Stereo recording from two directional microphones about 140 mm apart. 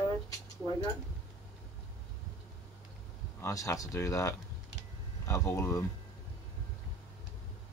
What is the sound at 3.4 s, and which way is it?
Speech, 20° left (ahead or behind).